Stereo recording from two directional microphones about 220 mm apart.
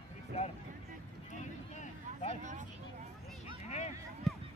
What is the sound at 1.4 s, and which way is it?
Vehicle, 35° left (ahead or behind).